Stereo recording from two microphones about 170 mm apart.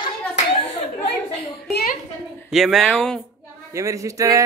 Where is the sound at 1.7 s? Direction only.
60° left (ahead or behind).